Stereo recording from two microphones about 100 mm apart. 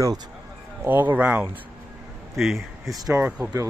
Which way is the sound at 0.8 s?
20° right (ahead or behind).